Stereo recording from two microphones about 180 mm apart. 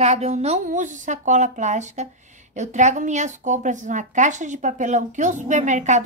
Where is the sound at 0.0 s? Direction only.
35° right (ahead or behind).